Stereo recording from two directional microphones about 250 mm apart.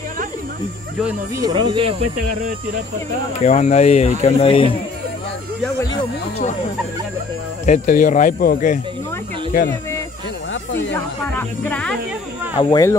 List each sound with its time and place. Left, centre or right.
1.4 s speech: centre
3.3 s speech: left
7.6 s speech: left
10.9 s speech: centre